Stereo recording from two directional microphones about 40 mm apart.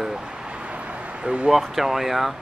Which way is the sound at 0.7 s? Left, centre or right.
Right.